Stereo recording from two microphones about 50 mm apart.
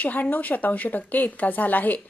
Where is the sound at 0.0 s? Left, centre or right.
Left.